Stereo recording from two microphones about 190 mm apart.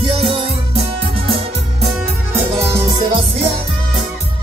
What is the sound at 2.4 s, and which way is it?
Music, 15° right (ahead or behind).